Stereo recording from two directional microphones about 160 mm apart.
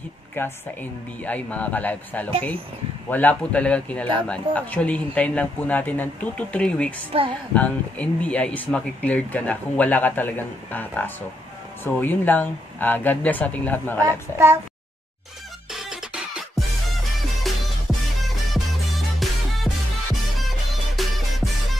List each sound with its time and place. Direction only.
0.4 s speech: 15° left (ahead or behind)
7.1 s a woman's voice: 35° right (ahead or behind)
7.5 s speech: 10° left (ahead or behind)
15.7 s music: 5° right (ahead or behind)